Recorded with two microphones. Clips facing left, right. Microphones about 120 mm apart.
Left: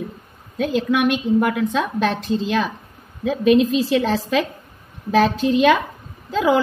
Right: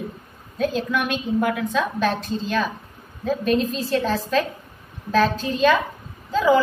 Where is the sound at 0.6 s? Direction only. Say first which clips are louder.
Left 4 dB; 75° left (ahead or behind).